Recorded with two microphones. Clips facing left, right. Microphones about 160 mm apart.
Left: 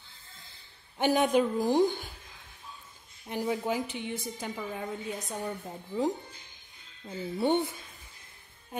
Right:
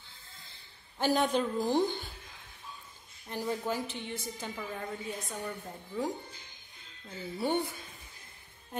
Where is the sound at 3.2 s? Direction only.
15° left (ahead or behind).